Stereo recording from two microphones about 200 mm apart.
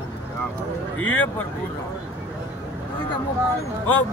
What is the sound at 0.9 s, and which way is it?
Speech, 90° left.